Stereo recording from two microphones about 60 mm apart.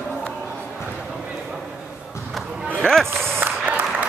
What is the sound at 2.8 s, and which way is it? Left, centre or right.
Speech, centre.